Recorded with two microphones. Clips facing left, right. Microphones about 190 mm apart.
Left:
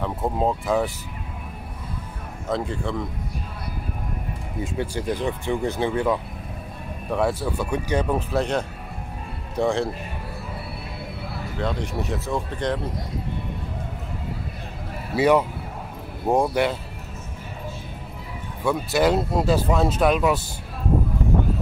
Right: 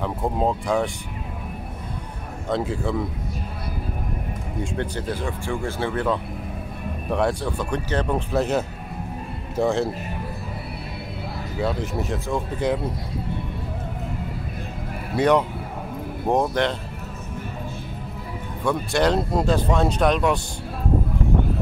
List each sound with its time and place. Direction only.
0.0 s speech: centre (ahead or behind)
2.5 s speech: 5° right (ahead or behind)
4.6 s speech: 10° left (ahead or behind)
7.1 s speech: centre (ahead or behind)
8.3 s speech: 5° right (ahead or behind)
11.5 s speech: 5° right (ahead or behind)
15.1 s speech: 5° left (ahead or behind)
18.6 s speech: 5° left (ahead or behind)